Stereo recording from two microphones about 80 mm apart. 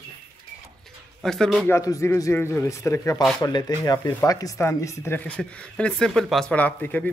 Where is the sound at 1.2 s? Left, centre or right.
Centre.